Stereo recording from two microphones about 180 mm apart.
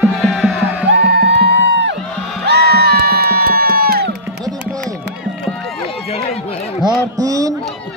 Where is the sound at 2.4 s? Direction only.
65° right (ahead or behind).